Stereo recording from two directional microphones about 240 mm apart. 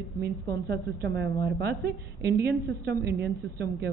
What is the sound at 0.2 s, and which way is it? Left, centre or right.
A woman's voice, right.